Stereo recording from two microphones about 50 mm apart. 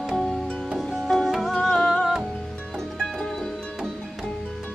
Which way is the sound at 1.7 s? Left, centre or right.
Centre.